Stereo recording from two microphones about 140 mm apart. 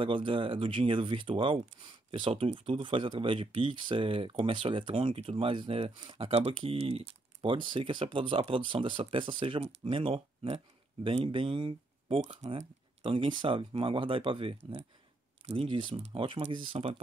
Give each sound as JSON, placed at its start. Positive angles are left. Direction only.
{"t": 0.0, "sound": "speech", "side_deg": -35}